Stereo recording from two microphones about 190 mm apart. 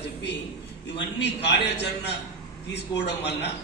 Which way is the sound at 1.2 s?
65° left (ahead or behind).